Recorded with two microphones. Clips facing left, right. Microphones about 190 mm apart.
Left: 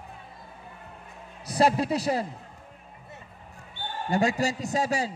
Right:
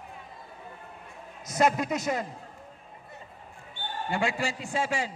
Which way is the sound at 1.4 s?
30° left (ahead or behind).